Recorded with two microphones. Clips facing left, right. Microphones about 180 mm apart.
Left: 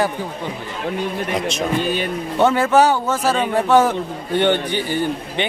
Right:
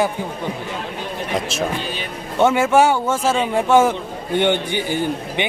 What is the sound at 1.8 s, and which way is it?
Speech, 50° left (ahead or behind).